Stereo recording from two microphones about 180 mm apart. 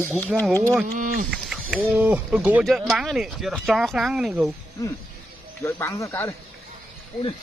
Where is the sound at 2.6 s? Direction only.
Centre (ahead or behind).